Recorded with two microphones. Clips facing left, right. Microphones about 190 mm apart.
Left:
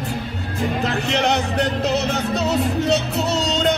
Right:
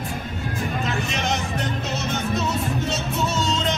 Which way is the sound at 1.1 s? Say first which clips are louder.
Left 6 dB; 65° left (ahead or behind).